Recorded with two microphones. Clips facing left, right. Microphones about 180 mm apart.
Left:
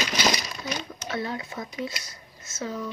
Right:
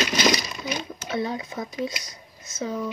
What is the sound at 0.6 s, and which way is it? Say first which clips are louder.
Speech: right 2 dB; 20° right (ahead or behind).